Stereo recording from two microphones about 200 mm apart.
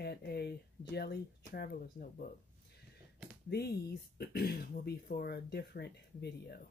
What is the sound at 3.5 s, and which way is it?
Speech, 55° left (ahead or behind).